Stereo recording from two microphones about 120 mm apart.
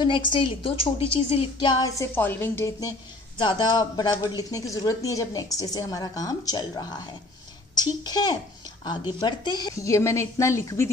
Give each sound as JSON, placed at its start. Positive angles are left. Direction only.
{"t": 0.0, "sound": "a woman's voice", "side_deg": 45}
{"t": 1.7, "sound": "a woman's voice", "side_deg": 30}
{"t": 2.1, "sound": "a woman's voice", "side_deg": 20}
{"t": 3.3, "sound": "a woman's voice", "side_deg": 40}
{"t": 9.8, "sound": "a woman's voice", "side_deg": 25}